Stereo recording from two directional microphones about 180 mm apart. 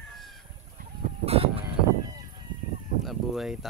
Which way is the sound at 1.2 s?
35° right (ahead or behind).